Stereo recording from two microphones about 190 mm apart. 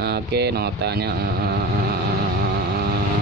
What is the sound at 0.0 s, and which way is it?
Speech, 60° right (ahead or behind).